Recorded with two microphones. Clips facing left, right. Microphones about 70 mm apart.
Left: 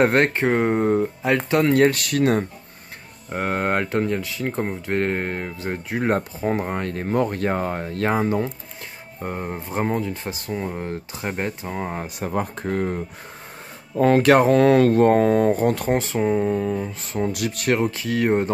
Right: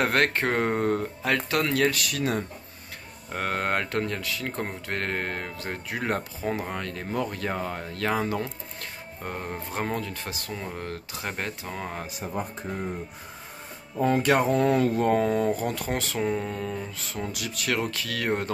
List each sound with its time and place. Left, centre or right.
0.0 s speech: left
1.9 s speech: left
3.3 s speech: centre
9.2 s speech: centre
12.2 s speech: left
15.9 s speech: left
17.0 s speech: left
17.3 s speech: left
17.6 s speech: left